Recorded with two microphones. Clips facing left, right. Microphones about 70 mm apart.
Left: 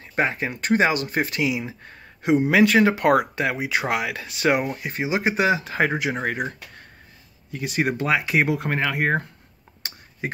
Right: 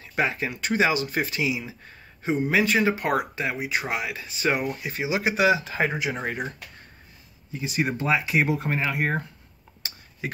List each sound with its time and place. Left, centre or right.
0.0 s speech: left
2.2 s speech: left
4.6 s speech: left